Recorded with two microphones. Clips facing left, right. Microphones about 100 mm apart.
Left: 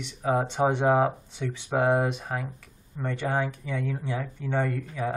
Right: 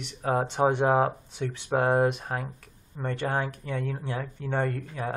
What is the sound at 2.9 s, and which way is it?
Speech, 15° right (ahead or behind).